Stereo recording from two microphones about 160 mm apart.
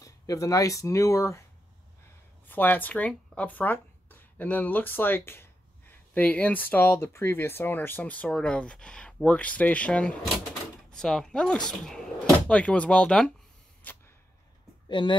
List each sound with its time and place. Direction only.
0.0 s speech: 20° left (ahead or behind)
2.4 s speech: 10° left (ahead or behind)
13.9 s a sound: 10° left (ahead or behind)
14.9 s speech: 30° left (ahead or behind)